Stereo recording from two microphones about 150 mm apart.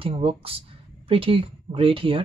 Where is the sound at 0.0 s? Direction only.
40° right (ahead or behind).